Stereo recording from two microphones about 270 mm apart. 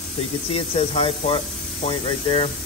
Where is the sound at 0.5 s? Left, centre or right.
Left.